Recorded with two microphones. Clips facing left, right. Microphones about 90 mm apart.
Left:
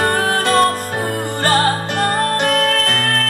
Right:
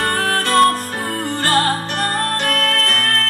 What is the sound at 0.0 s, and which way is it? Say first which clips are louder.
Music: left 3 dB; 20° left (ahead or behind).